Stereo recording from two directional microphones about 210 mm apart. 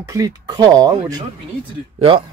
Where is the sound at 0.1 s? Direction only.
15° right (ahead or behind).